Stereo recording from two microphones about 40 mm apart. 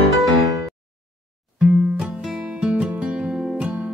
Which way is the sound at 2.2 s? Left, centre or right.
Centre.